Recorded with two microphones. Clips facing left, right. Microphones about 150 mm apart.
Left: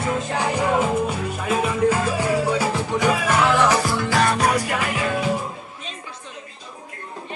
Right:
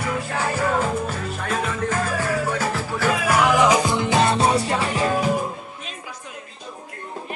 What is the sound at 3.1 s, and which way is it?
Music, 10° right (ahead or behind).